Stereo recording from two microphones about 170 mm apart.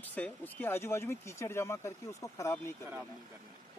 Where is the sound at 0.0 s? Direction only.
10° left (ahead or behind).